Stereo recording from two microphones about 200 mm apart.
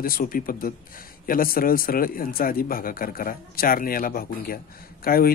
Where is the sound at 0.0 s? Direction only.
45° left (ahead or behind).